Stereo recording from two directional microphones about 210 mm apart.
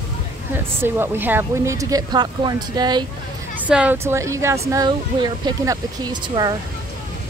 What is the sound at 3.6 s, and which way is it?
Speech, 5° right (ahead or behind).